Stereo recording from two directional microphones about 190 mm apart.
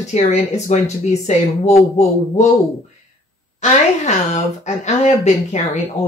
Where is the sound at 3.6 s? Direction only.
35° left (ahead or behind).